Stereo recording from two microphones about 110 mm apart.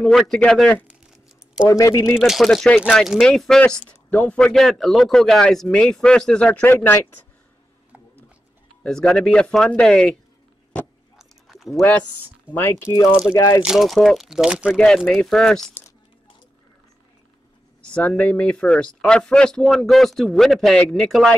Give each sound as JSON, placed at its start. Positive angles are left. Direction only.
{"t": 0.0, "sound": "speech", "side_deg": 0}
{"t": 0.8, "sound": "crumpling", "side_deg": -10}
{"t": 1.7, "sound": "speech", "side_deg": 30}
{"t": 2.1, "sound": "speech", "side_deg": 0}
{"t": 8.8, "sound": "speech", "side_deg": 5}
{"t": 11.1, "sound": "a sound", "side_deg": 0}
{"t": 12.4, "sound": "speech", "side_deg": 20}
{"t": 13.6, "sound": "speech", "side_deg": -5}
{"t": 17.8, "sound": "speech", "side_deg": 10}